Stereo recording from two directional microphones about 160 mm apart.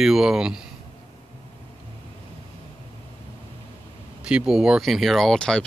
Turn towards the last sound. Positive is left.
turn(degrees=5)  # may be behind; listen again after turning